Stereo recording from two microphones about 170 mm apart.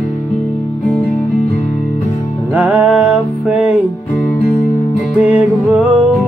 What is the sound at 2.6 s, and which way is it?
Music, 10° right (ahead or behind).